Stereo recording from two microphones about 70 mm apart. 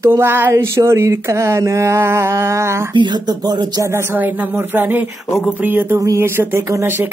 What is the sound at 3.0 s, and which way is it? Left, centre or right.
Speech, right.